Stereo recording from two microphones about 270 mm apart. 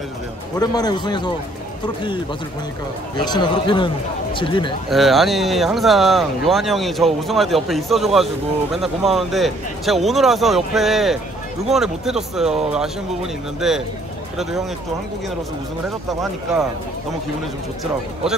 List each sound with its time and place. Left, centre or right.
0.6 s a man's voice: centre
3.3 s a man's voice: centre
4.8 s speech: centre
16.1 s speech: centre